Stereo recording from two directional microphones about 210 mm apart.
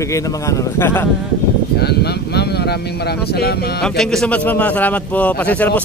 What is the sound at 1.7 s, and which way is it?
Speech, 50° left (ahead or behind).